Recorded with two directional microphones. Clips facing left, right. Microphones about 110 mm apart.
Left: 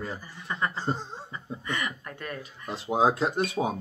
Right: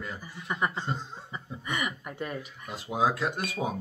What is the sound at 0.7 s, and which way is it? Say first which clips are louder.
Speech: left 3 dB; 35° left (ahead or behind).